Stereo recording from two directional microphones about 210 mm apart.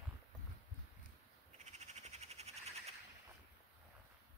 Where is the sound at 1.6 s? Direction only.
35° right (ahead or behind).